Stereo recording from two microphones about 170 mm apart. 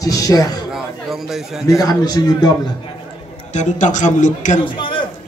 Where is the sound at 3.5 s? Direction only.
45° left (ahead or behind).